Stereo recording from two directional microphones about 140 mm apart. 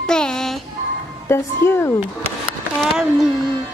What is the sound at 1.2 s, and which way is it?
Speech, 20° left (ahead or behind).